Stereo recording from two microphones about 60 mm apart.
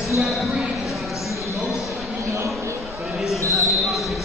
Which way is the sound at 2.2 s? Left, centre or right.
Right.